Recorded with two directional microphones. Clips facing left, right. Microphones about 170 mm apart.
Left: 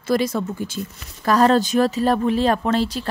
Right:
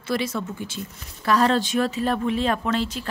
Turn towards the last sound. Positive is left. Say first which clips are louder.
# left 4 dB
turn(degrees=35)  # may be behind; listen again after turning